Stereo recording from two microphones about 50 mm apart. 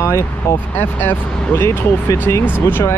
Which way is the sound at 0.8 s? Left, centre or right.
Left.